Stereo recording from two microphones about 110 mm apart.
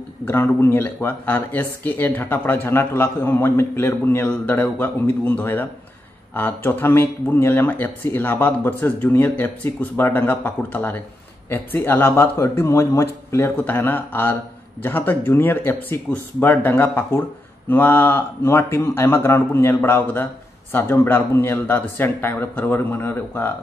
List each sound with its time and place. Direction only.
0.2 s speech: 20° left (ahead or behind)